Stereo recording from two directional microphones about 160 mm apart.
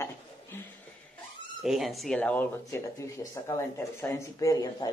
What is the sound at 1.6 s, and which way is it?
Speech, centre (ahead or behind).